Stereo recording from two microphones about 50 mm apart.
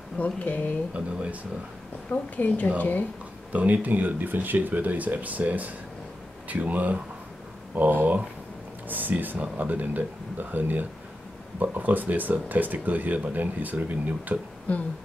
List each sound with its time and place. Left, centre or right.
0.2 s speech: left
0.9 s speech: right
2.0 s a woman's voice: left
3.5 s speech: right